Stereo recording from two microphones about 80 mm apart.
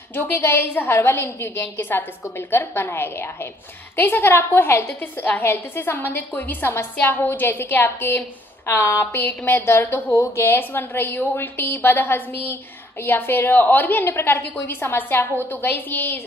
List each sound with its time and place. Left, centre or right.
0.1 s a woman's voice: left